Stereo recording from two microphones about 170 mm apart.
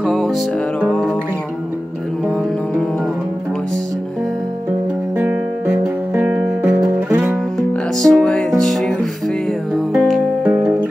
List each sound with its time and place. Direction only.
0.0 s music: centre (ahead or behind)
5.1 s music: 10° right (ahead or behind)
6.8 s guitar: 15° right (ahead or behind)
8.0 s music: 5° left (ahead or behind)
9.9 s music: 5° right (ahead or behind)